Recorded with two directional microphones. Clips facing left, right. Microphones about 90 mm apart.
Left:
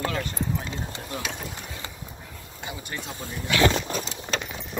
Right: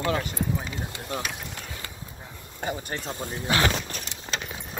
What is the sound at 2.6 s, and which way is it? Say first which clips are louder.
Speech: right 5 dB; 45° right (ahead or behind).